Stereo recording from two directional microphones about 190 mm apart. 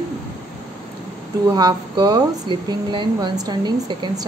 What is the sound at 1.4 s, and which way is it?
Speech, 20° right (ahead or behind).